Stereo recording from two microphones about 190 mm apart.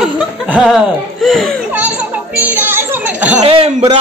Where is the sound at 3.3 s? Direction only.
35° right (ahead or behind).